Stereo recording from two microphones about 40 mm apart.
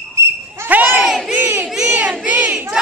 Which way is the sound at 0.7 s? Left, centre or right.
Right.